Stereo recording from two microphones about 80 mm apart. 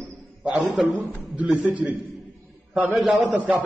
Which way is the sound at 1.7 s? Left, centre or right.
Centre.